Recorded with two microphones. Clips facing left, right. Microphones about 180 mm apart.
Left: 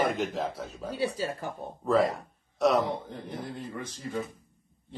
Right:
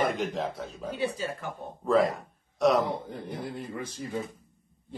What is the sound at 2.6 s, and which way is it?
Speech, centre (ahead or behind).